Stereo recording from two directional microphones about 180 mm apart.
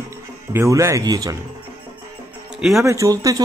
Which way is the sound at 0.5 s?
15° right (ahead or behind).